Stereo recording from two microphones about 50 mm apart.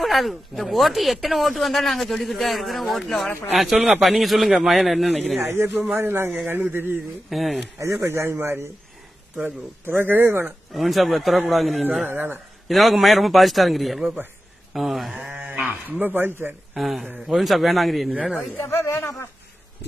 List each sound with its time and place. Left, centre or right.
0.0 s speech: centre
5.4 s speech: right
7.2 s speech: centre
7.8 s speech: right
9.4 s speech: right
10.7 s speech: centre
12.0 s speech: right
12.6 s speech: centre
15.2 s speech: right
16.7 s speech: centre
18.7 s speech: left